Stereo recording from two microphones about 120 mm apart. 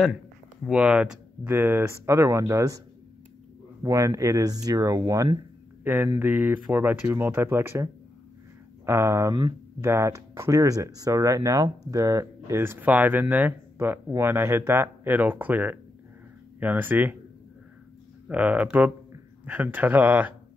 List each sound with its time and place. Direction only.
0.7 s speech: 10° right (ahead or behind)
1.5 s speech: 20° right (ahead or behind)
3.8 s speech: 25° right (ahead or behind)
6.1 s speech: 15° right (ahead or behind)
18.3 s speech: 10° right (ahead or behind)